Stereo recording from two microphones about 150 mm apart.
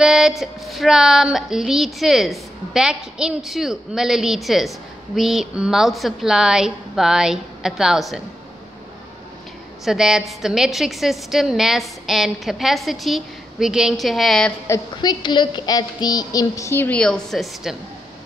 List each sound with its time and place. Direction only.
0.0 s speech: 5° right (ahead or behind)
9.8 s speech: 5° right (ahead or behind)
14.7 s a woman's voice: 30° left (ahead or behind); by 17.7 s centre (ahead or behind)